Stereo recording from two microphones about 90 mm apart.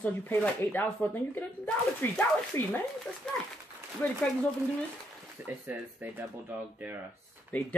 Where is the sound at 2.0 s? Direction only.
25° left (ahead or behind).